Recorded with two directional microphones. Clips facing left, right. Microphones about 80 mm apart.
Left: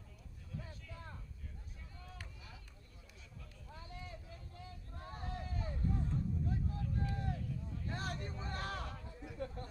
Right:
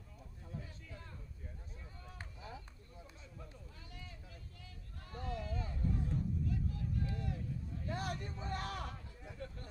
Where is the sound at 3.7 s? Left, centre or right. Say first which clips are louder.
Left 5 dB; left.